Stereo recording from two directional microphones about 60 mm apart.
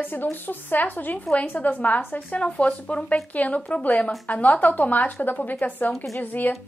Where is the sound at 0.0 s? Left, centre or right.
Left.